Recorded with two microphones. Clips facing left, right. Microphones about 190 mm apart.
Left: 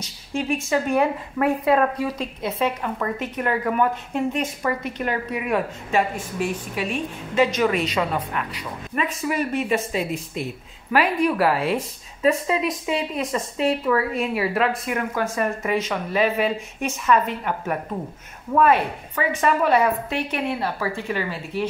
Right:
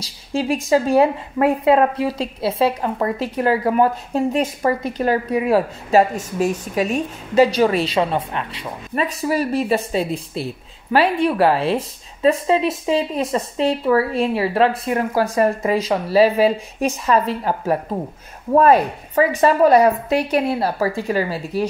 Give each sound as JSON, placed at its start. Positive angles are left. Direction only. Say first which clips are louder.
{"t": 0.0, "sound": "a woman's voice", "louder": "right 4 dB", "side_deg": -35}